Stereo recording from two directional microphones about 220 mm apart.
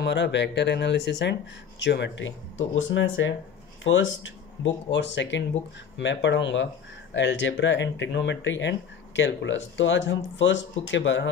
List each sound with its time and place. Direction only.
0.0 s speech: 50° left (ahead or behind)